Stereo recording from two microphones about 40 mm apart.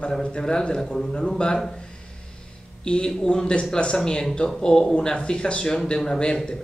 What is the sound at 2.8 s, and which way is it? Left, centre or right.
A man's voice, left.